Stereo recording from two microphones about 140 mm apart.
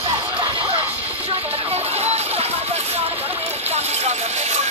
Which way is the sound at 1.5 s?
45° right (ahead or behind).